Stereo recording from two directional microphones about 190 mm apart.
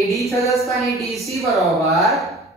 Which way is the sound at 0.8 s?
Centre (ahead or behind).